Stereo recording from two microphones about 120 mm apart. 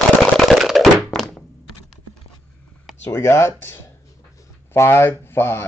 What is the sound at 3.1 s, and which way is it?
Speech, 25° left (ahead or behind).